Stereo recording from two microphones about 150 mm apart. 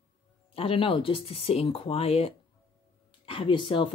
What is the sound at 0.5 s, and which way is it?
Speech, 40° left (ahead or behind).